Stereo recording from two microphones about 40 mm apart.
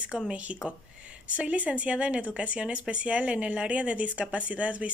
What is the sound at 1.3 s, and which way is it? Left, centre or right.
Speech, right.